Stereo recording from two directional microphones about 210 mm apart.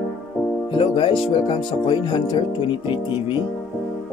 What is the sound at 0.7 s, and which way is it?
A man's voice, 25° left (ahead or behind).